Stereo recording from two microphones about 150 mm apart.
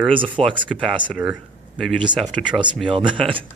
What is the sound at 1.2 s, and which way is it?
Speech, 5° right (ahead or behind).